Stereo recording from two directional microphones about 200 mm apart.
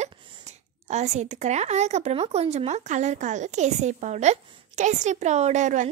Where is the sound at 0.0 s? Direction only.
35° right (ahead or behind).